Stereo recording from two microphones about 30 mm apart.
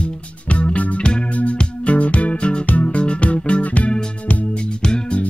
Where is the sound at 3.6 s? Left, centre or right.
Left.